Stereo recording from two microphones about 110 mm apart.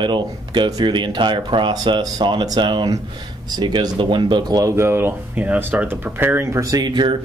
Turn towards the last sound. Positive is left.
turn(degrees=-45)  # may be behind; listen again after turning